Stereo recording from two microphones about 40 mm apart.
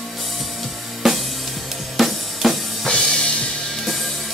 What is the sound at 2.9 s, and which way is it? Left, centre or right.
Music, left.